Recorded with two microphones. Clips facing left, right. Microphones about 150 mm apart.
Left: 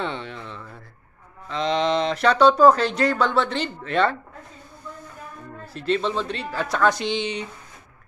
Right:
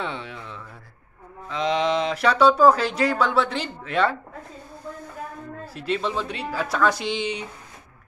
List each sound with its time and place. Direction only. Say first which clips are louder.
0.0 s a sound: left 2 dB; 5° right (ahead or behind)
1.5 s speech: left 1 dB; 5° right (ahead or behind)
5.7 s speech: left 3 dB; 10° right (ahead or behind)